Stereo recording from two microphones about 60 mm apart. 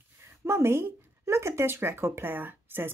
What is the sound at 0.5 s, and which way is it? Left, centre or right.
Speech, right.